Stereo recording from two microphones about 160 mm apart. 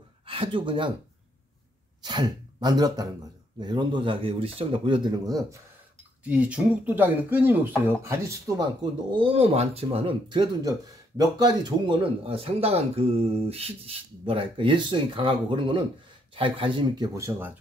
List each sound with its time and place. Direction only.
0.3 s speech: 35° right (ahead or behind)
2.0 s a man's voice: 25° right (ahead or behind)
6.2 s speech: 10° right (ahead or behind)
9.1 s a man's voice: 35° right (ahead or behind); by 17.6 s 15° right (ahead or behind)